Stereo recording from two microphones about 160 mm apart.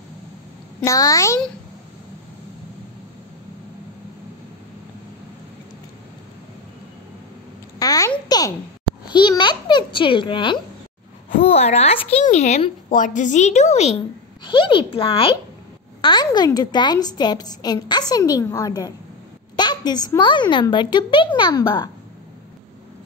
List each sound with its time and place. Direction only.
0.8 s a woman's voice: 20° left (ahead or behind)
7.8 s a sound: 20° left (ahead or behind)
8.3 s a child's voice: 25° left (ahead or behind)
11.4 s a child's voice: 40° left (ahead or behind)
14.4 s a child's voice: 30° left (ahead or behind)